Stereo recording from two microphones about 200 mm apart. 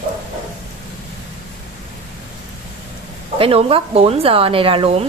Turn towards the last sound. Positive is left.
turn(degrees=-25)  # may be behind; listen again after turning